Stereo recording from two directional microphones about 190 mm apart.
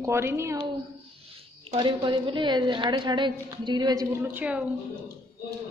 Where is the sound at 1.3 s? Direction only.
30° right (ahead or behind); by 4.6 s 10° right (ahead or behind).